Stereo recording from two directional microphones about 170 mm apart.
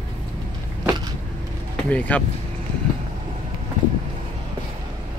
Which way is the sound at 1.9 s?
10° left (ahead or behind).